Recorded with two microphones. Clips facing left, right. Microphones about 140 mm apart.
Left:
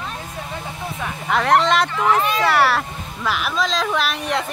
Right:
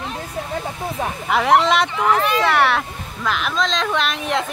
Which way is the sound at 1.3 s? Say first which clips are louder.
Right 1 dB; 5° right (ahead or behind).